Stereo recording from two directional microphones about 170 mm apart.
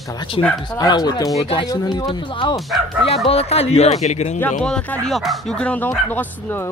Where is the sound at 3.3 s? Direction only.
35° left (ahead or behind).